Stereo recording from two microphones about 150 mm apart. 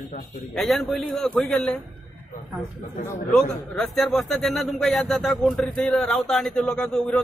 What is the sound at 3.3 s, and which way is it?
A man's voice, centre (ahead or behind).